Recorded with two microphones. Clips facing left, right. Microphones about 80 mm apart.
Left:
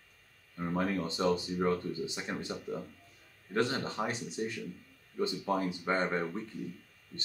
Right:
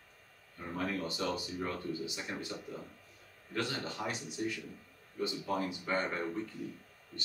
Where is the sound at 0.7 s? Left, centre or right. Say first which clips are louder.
Left 3 dB; left.